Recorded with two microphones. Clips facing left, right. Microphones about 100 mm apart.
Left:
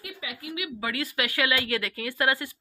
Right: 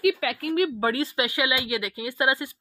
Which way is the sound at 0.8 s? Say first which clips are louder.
Right 5 dB; 30° right (ahead or behind).